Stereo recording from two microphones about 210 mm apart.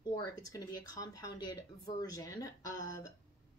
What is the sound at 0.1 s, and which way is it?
Speech, 15° left (ahead or behind).